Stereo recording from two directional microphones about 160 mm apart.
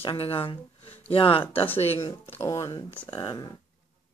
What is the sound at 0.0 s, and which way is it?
Speech, 35° left (ahead or behind).